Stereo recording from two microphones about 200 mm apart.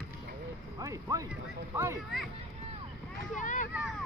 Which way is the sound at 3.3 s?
40° left (ahead or behind).